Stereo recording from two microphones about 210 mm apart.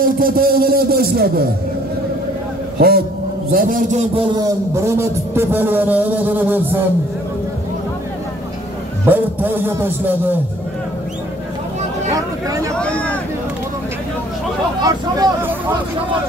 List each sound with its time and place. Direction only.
0.0 s a man's voice: 45° right (ahead or behind)
2.8 s a man's voice: 45° right (ahead or behind)
4.4 s a man's voice: 15° right (ahead or behind)
9.0 s a man's voice: 10° right (ahead or behind)
12.1 s a man's voice: 15° right (ahead or behind)
12.7 s speech: 5° left (ahead or behind)
14.8 s a man's voice: 15° right (ahead or behind)